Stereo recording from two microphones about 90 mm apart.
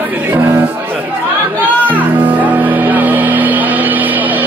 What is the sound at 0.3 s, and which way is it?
Music, 25° right (ahead or behind).